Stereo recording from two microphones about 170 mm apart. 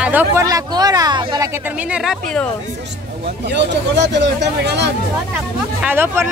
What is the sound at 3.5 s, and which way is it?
Speech, 90° right.